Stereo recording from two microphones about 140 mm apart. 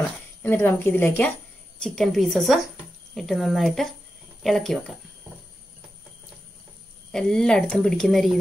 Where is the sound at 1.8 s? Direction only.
Centre (ahead or behind).